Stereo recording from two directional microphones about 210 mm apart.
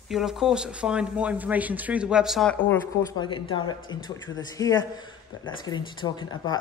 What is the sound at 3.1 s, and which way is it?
Speech, 20° left (ahead or behind).